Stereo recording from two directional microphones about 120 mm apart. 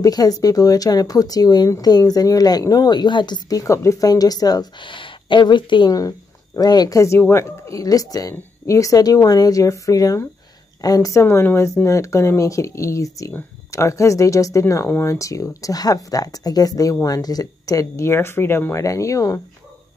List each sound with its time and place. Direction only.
0.0 s speech: 30° left (ahead or behind)